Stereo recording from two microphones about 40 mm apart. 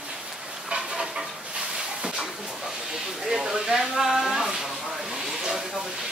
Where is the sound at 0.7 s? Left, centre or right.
Centre.